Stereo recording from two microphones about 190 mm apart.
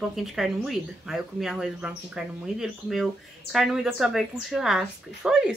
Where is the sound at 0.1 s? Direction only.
Centre (ahead or behind).